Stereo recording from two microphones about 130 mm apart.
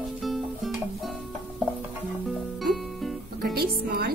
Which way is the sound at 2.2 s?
Centre (ahead or behind).